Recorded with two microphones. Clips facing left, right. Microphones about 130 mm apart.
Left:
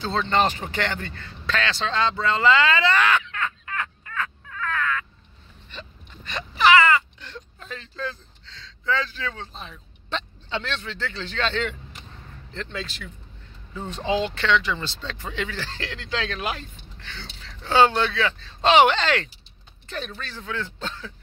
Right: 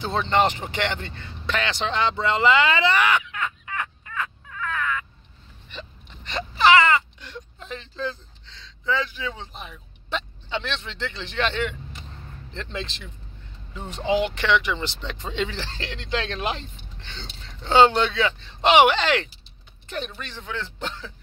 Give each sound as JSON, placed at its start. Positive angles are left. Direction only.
{"t": 0.0, "sound": "speech", "side_deg": -15}
{"t": 5.7, "sound": "a sound", "side_deg": -20}
{"t": 12.5, "sound": "speech", "side_deg": -25}